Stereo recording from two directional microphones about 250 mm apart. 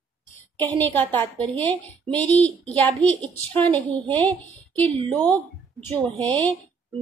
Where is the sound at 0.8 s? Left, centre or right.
Centre.